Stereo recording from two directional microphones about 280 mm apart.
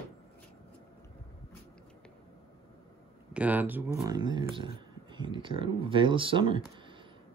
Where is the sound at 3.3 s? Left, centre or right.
Centre.